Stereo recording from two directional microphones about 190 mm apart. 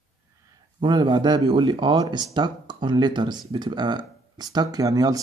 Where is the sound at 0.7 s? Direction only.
25° right (ahead or behind).